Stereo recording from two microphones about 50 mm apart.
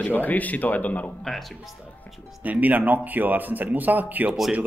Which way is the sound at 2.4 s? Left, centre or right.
Right.